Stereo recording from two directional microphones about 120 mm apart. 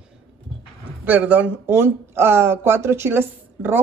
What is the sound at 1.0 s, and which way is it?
Speech, 10° right (ahead or behind).